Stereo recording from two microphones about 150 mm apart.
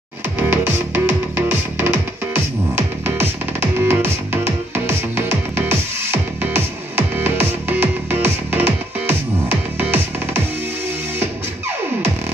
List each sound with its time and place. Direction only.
0.5 s music: 15° right (ahead or behind)